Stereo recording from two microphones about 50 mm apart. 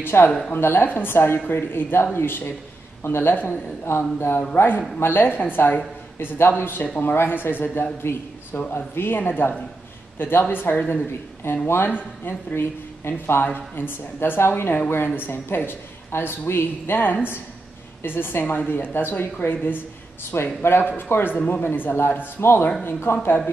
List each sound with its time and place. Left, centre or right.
0.0 s a man's voice: left
20.3 s speech: left
21.5 s a man's voice: left